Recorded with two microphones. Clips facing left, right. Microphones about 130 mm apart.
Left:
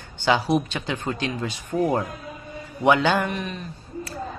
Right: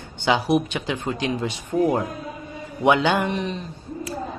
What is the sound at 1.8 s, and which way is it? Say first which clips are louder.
Speech: right 2 dB; 5° right (ahead or behind).